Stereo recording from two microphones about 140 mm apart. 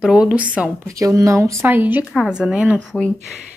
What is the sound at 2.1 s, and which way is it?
Speech, 5° right (ahead or behind).